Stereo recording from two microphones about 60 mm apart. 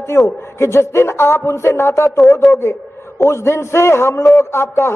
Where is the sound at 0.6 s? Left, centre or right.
Left.